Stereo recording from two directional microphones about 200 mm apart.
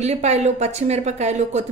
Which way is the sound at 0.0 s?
35° right (ahead or behind).